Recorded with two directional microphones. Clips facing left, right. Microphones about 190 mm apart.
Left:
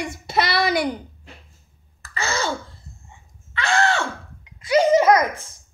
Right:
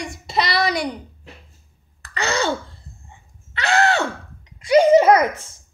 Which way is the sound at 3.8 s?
35° right (ahead or behind).